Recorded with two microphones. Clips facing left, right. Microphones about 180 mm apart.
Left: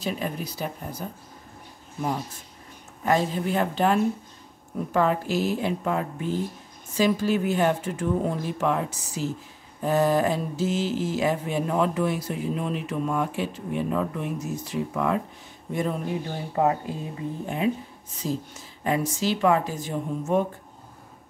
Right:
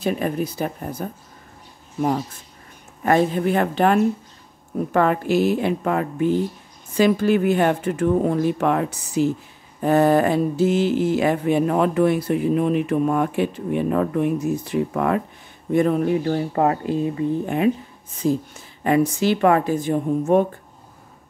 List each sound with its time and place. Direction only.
0.0 s mantra: 55° right (ahead or behind)
3.1 s mantra: 60° right (ahead or behind)
18.2 s mantra: 55° right (ahead or behind)